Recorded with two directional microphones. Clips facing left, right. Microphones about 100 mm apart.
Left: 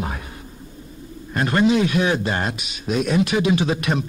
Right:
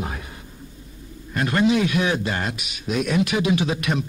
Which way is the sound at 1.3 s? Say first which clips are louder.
Left 2 dB; 35° left (ahead or behind).